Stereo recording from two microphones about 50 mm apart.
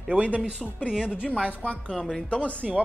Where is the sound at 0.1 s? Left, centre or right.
Right.